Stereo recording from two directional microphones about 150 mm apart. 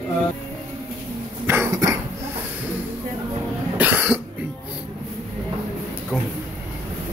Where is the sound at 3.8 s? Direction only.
10° right (ahead or behind).